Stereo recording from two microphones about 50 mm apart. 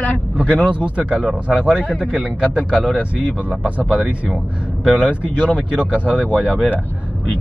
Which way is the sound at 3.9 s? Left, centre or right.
Centre.